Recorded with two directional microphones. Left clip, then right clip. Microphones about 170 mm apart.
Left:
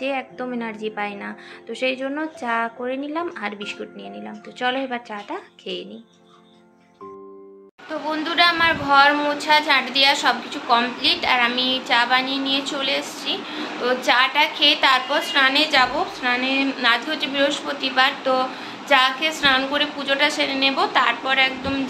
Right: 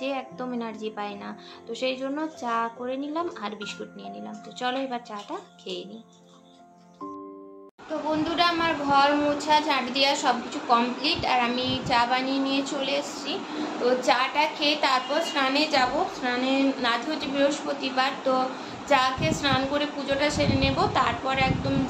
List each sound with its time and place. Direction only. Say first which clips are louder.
0.0 s a woman's voice: left 5 dB; 15° left (ahead or behind)
8.1 s a woman's voice: left 6 dB; 5° left (ahead or behind)